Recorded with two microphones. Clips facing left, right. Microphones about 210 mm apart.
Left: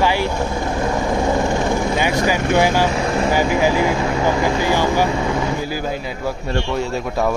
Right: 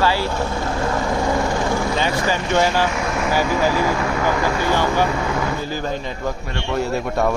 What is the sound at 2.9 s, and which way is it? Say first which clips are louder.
Speech: left 3 dB; 30° left (ahead or behind).